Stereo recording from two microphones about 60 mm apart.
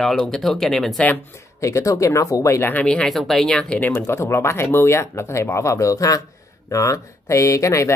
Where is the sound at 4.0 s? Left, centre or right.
Left.